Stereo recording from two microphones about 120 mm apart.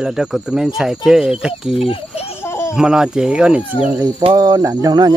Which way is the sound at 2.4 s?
20° left (ahead or behind).